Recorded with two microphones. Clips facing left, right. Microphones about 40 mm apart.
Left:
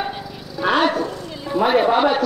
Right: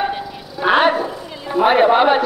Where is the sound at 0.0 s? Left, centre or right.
Centre.